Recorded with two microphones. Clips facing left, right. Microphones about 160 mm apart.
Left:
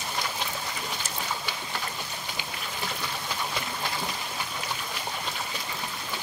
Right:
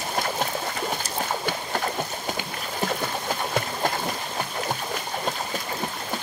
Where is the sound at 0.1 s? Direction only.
50° right (ahead or behind).